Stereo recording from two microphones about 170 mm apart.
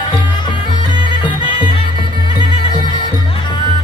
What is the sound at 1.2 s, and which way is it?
Music, 30° left (ahead or behind).